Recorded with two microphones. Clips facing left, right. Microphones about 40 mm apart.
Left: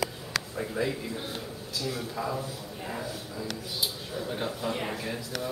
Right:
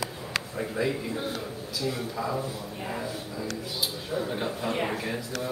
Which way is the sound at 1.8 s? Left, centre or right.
Right.